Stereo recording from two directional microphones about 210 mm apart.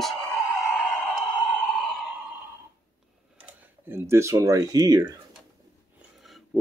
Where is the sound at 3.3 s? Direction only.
10° right (ahead or behind).